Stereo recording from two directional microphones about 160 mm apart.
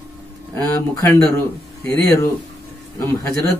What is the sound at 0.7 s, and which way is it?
A man's voice, 15° left (ahead or behind).